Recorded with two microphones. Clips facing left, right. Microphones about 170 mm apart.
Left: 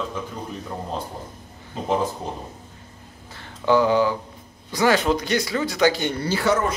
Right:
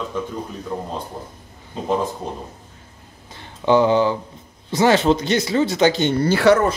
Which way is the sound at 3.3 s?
20° right (ahead or behind).